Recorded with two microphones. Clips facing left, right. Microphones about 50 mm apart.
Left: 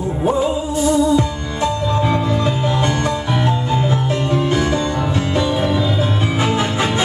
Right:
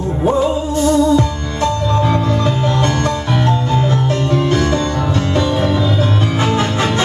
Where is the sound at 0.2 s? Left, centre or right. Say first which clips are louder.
Right 3 dB; right.